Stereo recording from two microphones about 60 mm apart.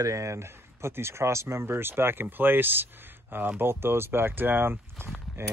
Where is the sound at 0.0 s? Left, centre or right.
Right.